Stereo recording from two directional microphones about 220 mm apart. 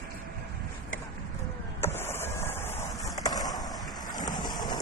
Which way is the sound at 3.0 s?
15° left (ahead or behind).